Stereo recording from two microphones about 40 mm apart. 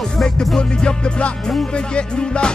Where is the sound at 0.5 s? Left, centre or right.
Left.